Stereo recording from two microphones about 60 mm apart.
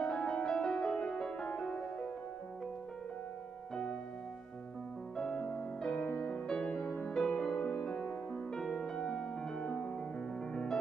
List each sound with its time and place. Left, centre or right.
0.0 s music: centre
5.1 s music: centre
7.5 s music: left
7.8 s music: centre